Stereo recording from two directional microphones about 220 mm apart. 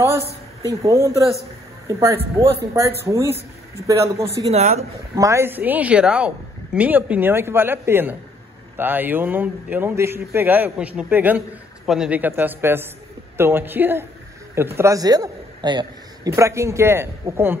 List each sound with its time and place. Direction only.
0.7 s speech: 10° right (ahead or behind)
4.5 s speech: 30° right (ahead or behind)
5.1 s a man's voice: 15° right (ahead or behind)